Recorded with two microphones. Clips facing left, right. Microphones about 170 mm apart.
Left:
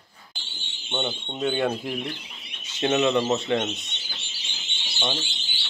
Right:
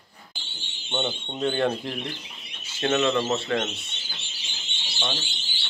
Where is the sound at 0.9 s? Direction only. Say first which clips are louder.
Even; 5° right (ahead or behind).